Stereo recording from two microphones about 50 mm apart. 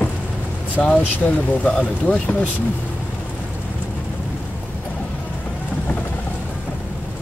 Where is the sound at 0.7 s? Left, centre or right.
Left.